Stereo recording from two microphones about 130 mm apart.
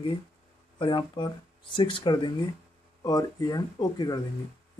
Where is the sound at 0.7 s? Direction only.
40° left (ahead or behind).